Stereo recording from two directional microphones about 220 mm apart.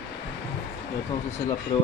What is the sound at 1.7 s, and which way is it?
Speech, 25° left (ahead or behind).